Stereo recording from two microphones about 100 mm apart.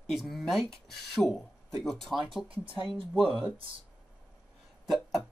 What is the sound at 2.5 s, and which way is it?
Speech, 65° right (ahead or behind).